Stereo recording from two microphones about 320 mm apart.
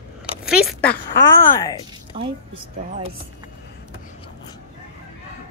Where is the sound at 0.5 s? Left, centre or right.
Centre.